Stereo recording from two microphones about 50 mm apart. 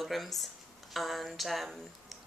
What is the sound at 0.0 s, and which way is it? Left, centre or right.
A woman's voice, centre.